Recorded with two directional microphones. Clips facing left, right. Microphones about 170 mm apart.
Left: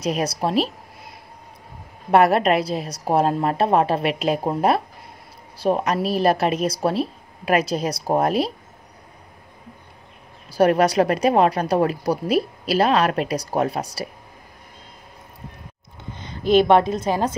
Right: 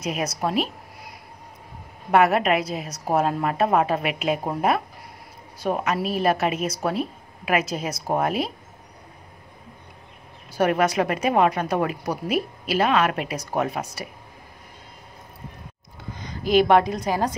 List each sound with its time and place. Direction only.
0.0 s a woman's voice: 35° left (ahead or behind)
10.5 s a woman's voice: 35° left (ahead or behind)
16.1 s a woman's voice: 25° left (ahead or behind)